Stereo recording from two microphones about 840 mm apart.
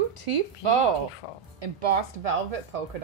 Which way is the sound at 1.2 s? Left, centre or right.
Left.